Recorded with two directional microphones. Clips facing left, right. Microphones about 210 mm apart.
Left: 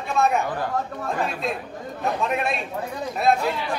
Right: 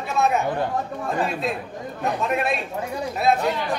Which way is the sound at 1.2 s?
Centre (ahead or behind).